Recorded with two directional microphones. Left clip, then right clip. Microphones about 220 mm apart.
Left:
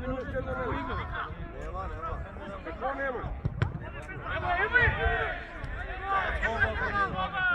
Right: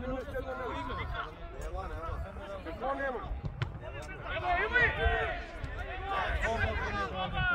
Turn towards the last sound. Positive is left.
turn(degrees=-15)  # may be behind; listen again after turning